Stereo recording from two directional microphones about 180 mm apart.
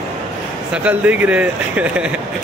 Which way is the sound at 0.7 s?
10° right (ahead or behind).